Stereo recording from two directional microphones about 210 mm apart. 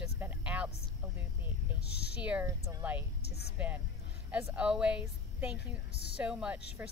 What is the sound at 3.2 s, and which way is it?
Speech, 50° left (ahead or behind).